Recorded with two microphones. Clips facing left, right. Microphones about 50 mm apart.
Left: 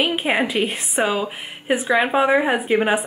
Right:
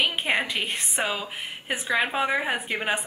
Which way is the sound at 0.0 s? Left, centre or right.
Centre.